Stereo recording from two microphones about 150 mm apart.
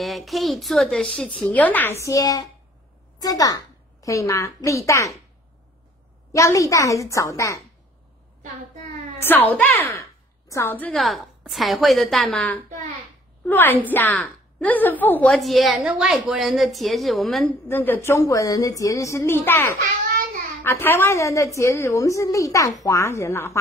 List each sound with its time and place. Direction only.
0.0 s a woman's voice: centre (ahead or behind); by 5.1 s 20° left (ahead or behind)
6.3 s a woman's voice: 20° left (ahead or behind)
9.2 s a woman's voice: 10° left (ahead or behind)
11.0 s a woman's voice: centre (ahead or behind)
15.3 s a woman's voice: centre (ahead or behind)
17.6 s a woman's voice: 15° left (ahead or behind)